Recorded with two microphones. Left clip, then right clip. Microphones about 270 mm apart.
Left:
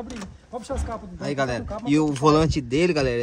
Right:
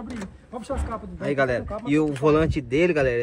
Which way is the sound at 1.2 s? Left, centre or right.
Centre.